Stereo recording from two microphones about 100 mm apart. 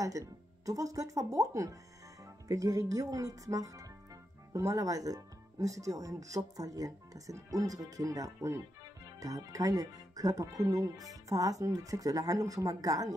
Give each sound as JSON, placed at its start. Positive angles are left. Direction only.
{"t": 0.0, "sound": "speech", "side_deg": -35}